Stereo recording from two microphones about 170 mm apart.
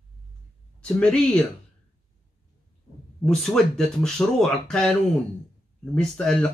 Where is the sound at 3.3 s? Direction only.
5° left (ahead or behind).